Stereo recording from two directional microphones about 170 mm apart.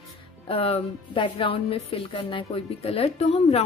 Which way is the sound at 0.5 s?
35° left (ahead or behind).